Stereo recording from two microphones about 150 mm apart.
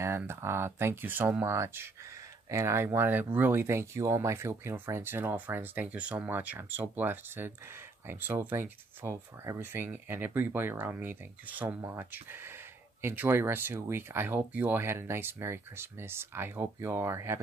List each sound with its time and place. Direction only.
0.2 s speech: 15° right (ahead or behind)